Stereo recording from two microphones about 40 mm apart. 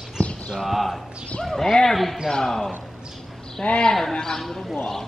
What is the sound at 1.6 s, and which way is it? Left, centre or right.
Speech, centre.